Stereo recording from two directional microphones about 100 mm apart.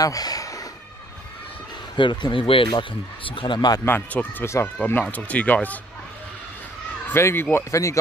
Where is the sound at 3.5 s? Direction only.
45° left (ahead or behind).